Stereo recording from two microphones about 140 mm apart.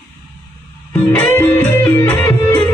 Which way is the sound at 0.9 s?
10° left (ahead or behind).